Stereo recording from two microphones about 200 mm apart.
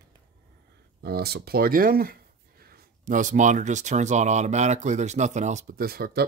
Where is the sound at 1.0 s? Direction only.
50° right (ahead or behind).